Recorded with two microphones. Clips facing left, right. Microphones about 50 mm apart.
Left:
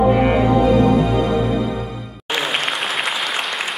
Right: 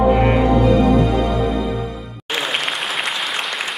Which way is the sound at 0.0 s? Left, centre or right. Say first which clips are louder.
Even; centre.